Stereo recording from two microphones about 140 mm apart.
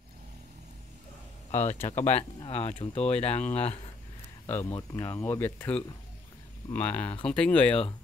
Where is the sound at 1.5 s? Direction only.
55° left (ahead or behind).